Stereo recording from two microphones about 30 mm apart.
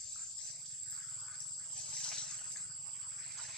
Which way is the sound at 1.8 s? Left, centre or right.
Left.